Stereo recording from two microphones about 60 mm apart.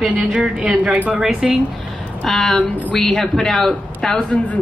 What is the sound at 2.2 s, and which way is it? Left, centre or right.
A woman's voice, centre.